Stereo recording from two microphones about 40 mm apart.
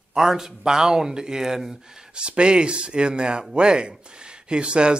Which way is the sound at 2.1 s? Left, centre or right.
Right.